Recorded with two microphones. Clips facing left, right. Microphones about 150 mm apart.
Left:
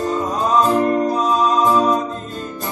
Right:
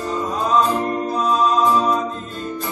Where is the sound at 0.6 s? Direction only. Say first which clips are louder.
Left 5 dB; 40° left (ahead or behind).